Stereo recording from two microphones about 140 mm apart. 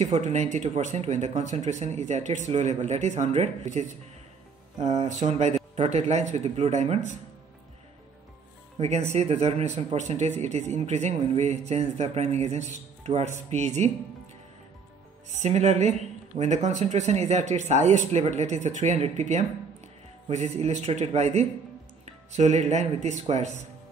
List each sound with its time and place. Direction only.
0.0 s speech: 55° right (ahead or behind)
4.8 s speech: 55° right (ahead or behind)
8.7 s speech: 50° right (ahead or behind)
15.4 s speech: 55° right (ahead or behind)